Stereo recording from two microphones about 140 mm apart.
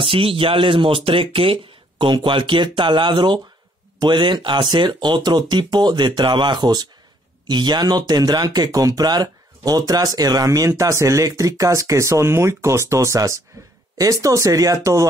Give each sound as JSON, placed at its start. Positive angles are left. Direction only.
{"t": 0.0, "sound": "speech", "side_deg": -40}